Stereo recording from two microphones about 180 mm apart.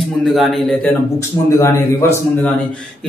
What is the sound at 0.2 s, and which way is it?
Speech, centre (ahead or behind).